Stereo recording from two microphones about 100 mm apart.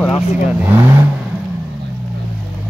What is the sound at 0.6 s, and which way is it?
Speech, 25° right (ahead or behind).